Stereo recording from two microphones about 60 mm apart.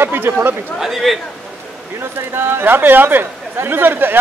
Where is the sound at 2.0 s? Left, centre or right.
Right.